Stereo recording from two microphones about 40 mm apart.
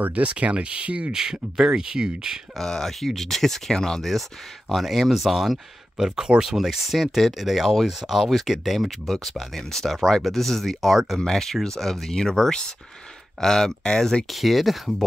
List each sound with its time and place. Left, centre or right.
0.0 s speech: right
1.1 s speech: centre
2.6 s speech: centre
5.9 s speech: centre
14.3 s speech: centre